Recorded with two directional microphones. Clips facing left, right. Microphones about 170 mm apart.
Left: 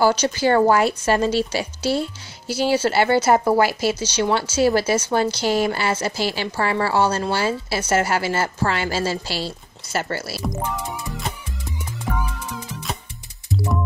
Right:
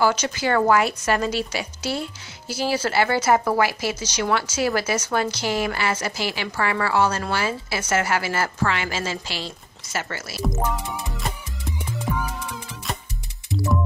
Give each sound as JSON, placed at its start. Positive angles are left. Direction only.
{"t": 0.0, "sound": "speech", "side_deg": 35}
{"t": 10.4, "sound": "speech", "side_deg": 0}